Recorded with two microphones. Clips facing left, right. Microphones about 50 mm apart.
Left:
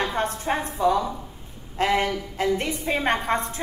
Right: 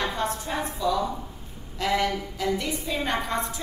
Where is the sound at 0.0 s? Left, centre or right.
Left.